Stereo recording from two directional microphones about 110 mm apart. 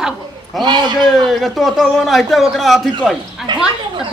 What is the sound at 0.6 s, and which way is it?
Speech, 40° right (ahead or behind).